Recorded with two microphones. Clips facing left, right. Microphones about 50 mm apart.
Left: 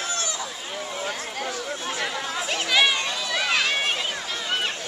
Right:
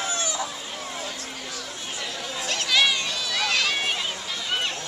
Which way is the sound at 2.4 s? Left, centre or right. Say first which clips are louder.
Left 1 dB; centre.